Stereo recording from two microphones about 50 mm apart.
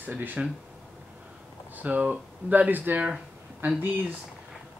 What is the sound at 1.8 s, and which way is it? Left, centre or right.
Speech, right.